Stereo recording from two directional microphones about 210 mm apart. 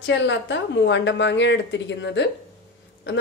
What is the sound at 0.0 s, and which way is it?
A woman's voice, 60° left (ahead or behind).